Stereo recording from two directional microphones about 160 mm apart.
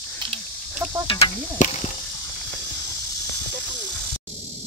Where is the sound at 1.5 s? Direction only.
45° left (ahead or behind).